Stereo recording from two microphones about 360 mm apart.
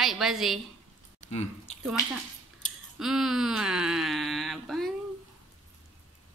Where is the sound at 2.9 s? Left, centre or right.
Centre.